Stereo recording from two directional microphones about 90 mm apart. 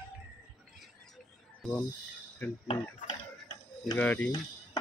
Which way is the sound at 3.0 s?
50° left (ahead or behind).